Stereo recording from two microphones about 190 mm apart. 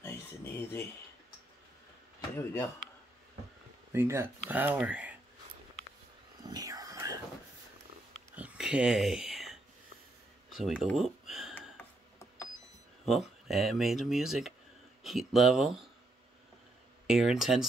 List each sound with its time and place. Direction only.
0.0 s a sound: 10° left (ahead or behind)
2.3 s speech: 15° left (ahead or behind)
3.9 s speech: 15° right (ahead or behind)
6.4 s whispering: 20° right (ahead or behind)
8.4 s a sound: 5° right (ahead or behind)
10.5 s speech: centre (ahead or behind)
11.7 s mechanisms: 15° left (ahead or behind)
13.0 s speech: centre (ahead or behind)
17.1 s speech: centre (ahead or behind)